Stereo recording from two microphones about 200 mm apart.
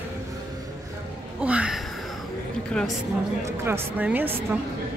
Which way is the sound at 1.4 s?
5° right (ahead or behind).